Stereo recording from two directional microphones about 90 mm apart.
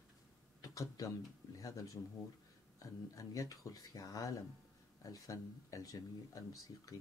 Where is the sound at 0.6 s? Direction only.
45° left (ahead or behind).